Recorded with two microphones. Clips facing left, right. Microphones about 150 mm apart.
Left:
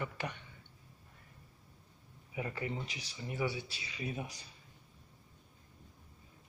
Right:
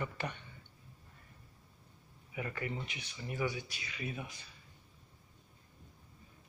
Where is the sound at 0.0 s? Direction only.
10° left (ahead or behind).